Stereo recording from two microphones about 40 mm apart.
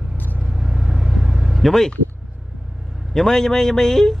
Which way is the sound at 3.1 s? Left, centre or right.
Centre.